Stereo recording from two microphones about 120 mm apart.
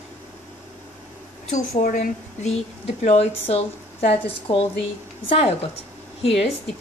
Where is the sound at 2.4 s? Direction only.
65° left (ahead or behind).